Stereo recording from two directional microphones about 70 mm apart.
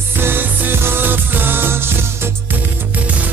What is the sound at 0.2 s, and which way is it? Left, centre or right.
Music, right.